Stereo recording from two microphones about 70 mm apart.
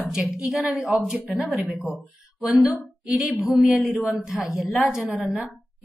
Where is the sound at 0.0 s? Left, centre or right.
Centre.